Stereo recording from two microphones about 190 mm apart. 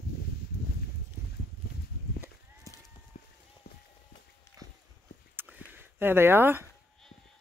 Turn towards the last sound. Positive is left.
turn(degrees=-10)  # may be behind; listen again after turning